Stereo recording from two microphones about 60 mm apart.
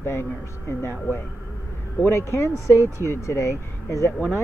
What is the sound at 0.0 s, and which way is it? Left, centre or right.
Speech, left.